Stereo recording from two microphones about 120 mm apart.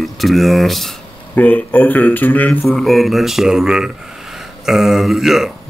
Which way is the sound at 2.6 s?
Centre (ahead or behind).